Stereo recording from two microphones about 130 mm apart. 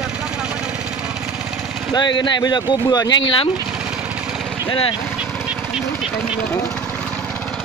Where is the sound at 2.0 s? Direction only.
35° left (ahead or behind).